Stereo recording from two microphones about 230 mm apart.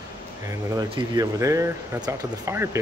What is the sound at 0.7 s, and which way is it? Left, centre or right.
Speech, centre.